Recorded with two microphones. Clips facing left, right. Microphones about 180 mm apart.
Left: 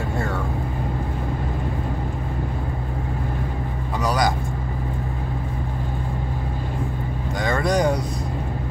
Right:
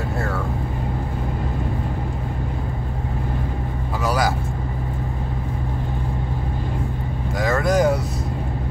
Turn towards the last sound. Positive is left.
turn(degrees=-5)  # may be behind; listen again after turning